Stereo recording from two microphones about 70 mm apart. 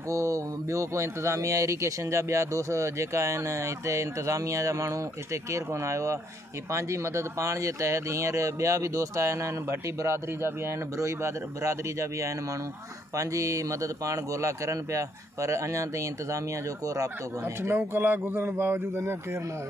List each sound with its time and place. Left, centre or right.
0.1 s speech: right
17.6 s speech: right